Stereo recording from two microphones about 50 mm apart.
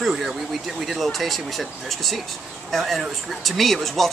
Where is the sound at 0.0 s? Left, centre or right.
Centre.